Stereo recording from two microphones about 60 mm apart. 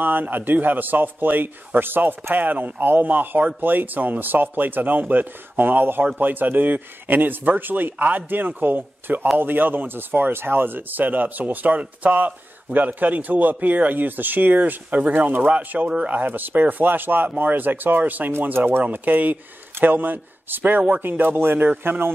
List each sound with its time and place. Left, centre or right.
0.0 s a man's voice: right